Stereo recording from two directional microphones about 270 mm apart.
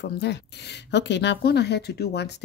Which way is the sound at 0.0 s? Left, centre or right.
Left.